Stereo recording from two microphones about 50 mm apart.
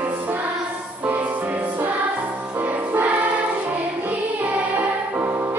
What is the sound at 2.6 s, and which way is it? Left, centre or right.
Music, right.